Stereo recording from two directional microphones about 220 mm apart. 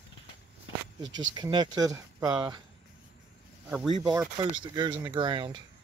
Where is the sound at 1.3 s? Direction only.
20° right (ahead or behind).